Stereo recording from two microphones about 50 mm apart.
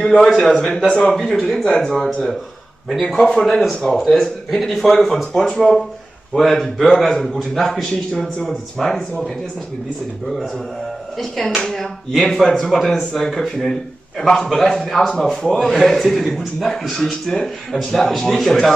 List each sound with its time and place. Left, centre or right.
0.0 s speech: centre
1.5 s speech: centre
1.8 s a man's voice: centre
11.1 s a man's voice: centre